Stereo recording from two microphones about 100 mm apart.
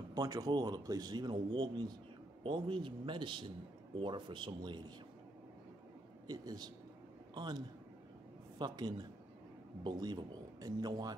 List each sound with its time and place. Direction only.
0.1 s a man's voice: 40° right (ahead or behind)
6.2 s a man's voice: 45° right (ahead or behind)